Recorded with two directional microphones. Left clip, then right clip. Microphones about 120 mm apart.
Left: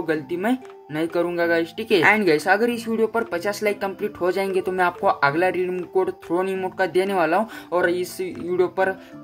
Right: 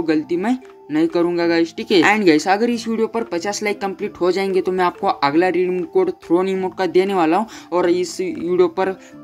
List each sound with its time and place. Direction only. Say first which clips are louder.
0.0 s speech: right 4 dB; 30° right (ahead or behind)